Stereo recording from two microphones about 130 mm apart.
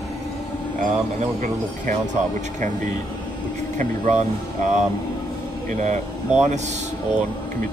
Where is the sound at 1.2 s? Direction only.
70° right (ahead or behind).